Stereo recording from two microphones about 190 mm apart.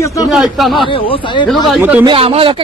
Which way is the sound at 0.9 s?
25° left (ahead or behind).